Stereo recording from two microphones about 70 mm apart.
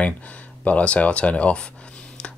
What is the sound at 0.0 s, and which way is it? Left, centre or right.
Speech, centre.